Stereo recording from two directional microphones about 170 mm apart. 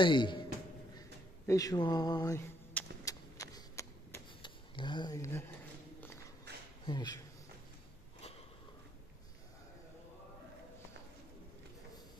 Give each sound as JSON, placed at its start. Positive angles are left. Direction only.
{"t": 0.0, "sound": "speech", "side_deg": 30}
{"t": 1.4, "sound": "a sound", "side_deg": 20}
{"t": 4.7, "sound": "speech", "side_deg": 30}
{"t": 6.9, "sound": "speech", "side_deg": 25}